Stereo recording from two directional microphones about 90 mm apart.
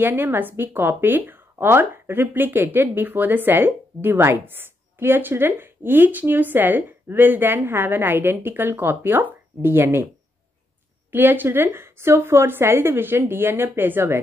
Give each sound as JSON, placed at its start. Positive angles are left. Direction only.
{"t": 0.0, "sound": "speech", "side_deg": -25}
{"t": 11.1, "sound": "speech", "side_deg": -20}